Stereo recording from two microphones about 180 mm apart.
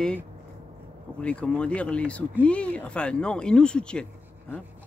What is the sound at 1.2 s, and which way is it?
Speech, 5° left (ahead or behind).